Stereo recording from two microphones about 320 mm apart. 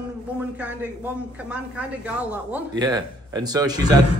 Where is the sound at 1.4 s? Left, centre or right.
Centre.